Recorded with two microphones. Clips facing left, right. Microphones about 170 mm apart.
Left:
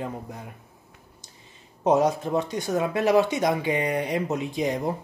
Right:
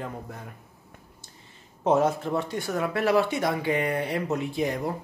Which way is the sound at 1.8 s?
15° left (ahead or behind).